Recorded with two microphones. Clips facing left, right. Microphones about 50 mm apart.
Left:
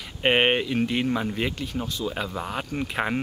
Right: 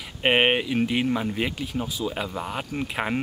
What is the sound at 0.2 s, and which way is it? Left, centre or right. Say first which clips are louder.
Speech: even; centre.